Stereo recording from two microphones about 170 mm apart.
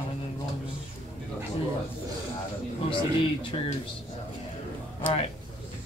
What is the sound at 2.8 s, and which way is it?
Speech, 30° left (ahead or behind).